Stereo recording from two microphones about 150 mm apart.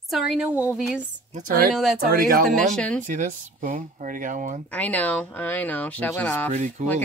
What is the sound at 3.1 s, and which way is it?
Speech, 55° right (ahead or behind).